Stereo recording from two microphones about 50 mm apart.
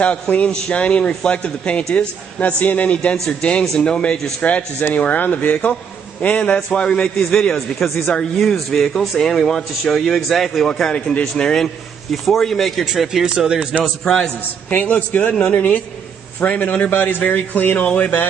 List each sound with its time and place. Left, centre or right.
0.0 s a man's voice: left
2.3 s a man's voice: left
7.5 s speech: centre
12.9 s speech: centre
13.8 s speech: centre
14.7 s a man's voice: left